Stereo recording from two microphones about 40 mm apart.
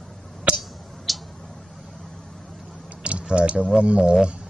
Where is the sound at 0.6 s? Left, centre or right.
Centre.